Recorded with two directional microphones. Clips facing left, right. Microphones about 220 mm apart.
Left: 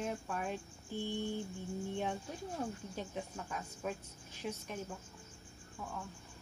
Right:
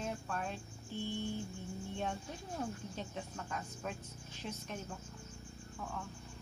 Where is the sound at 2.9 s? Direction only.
10° left (ahead or behind).